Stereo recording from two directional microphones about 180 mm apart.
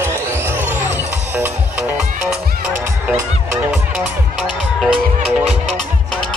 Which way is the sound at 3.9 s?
5° right (ahead or behind).